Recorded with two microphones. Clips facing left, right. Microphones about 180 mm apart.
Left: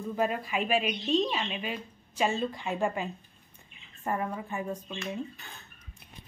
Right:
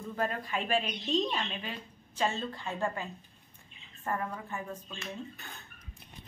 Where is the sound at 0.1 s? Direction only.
10° left (ahead or behind).